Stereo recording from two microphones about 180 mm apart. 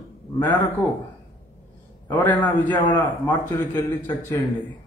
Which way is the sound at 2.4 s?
10° left (ahead or behind).